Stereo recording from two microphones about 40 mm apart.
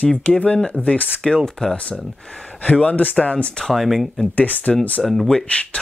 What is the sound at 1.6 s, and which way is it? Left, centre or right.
Speech, left.